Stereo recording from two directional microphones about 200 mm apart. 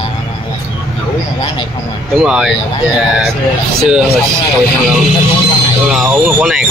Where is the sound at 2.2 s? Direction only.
5° right (ahead or behind).